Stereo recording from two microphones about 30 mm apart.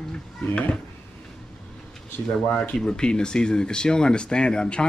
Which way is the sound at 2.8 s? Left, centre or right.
Left.